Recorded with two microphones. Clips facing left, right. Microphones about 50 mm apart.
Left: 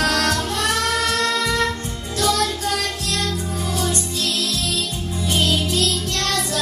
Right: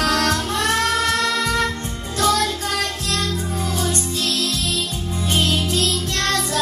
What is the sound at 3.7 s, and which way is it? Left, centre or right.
Music, right.